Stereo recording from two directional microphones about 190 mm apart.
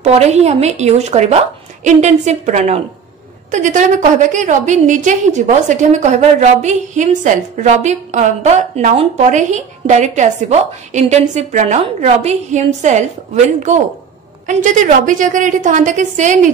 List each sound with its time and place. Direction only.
0.0 s a woman's voice: 35° right (ahead or behind)